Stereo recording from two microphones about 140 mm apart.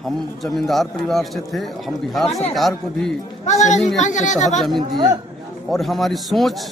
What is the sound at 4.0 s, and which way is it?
Speech, 60° left (ahead or behind).